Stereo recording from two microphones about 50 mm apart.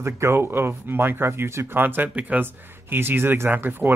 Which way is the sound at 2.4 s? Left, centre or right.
Right.